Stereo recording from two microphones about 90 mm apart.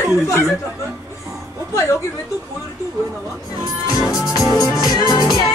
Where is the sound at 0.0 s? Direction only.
30° left (ahead or behind).